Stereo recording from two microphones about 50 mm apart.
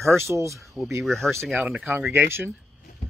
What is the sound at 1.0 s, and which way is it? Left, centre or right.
Speech, centre.